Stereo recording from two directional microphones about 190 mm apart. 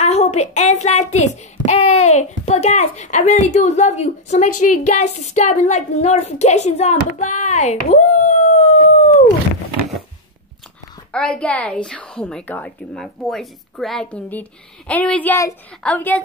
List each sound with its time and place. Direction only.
0.0 s speech: 35° left (ahead or behind)
8.9 s dog: 35° left (ahead or behind)
11.1 s a woman's voice: 5° left (ahead or behind)